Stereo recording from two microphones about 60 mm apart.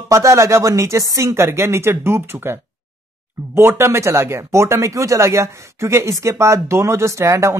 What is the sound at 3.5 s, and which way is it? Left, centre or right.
Speech, right.